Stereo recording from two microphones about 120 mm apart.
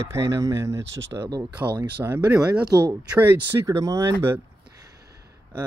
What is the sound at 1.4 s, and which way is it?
Speech, 15° right (ahead or behind).